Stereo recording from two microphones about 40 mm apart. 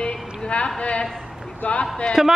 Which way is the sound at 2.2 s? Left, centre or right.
Centre.